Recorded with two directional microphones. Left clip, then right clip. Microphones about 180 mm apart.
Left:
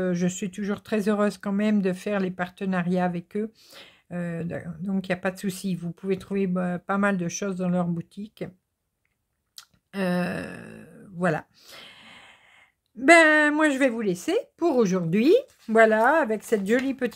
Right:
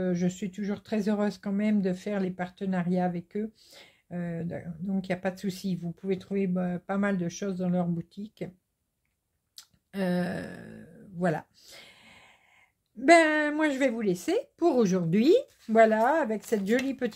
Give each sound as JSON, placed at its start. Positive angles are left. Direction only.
{"t": 0.0, "sound": "speech", "side_deg": 30}
{"t": 9.6, "sound": "speech", "side_deg": 20}